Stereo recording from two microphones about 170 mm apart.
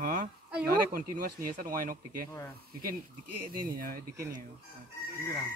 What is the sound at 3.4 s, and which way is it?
Speech, 55° right (ahead or behind).